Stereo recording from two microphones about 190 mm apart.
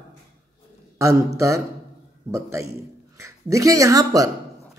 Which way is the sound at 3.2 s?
15° right (ahead or behind).